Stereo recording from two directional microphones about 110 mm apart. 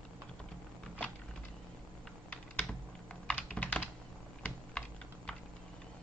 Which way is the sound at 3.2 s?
10° left (ahead or behind).